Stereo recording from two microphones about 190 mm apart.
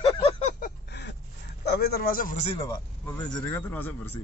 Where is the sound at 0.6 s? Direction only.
55° left (ahead or behind).